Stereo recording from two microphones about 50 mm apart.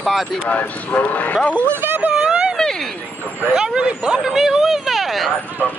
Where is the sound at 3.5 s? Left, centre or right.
Centre.